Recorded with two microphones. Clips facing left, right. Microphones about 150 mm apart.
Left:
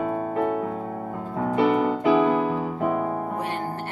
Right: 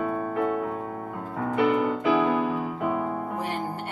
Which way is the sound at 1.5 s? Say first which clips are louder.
Left 2 dB; 35° left (ahead or behind).